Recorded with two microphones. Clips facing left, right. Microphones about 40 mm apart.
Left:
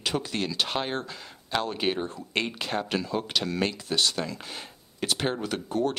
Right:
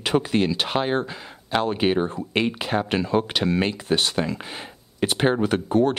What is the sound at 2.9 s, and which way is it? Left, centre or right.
Speech, right.